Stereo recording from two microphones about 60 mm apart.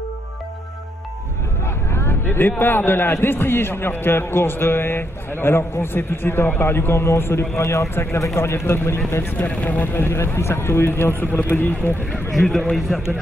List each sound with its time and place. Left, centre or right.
1.9 s vehicle: left
2.6 s a man's voice: left
9.4 s speech: left
9.9 s a man's voice: left
12.4 s a man's voice: centre